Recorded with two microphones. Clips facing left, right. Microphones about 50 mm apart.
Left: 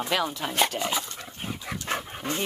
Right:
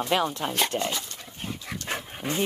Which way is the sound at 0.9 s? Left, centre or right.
Centre.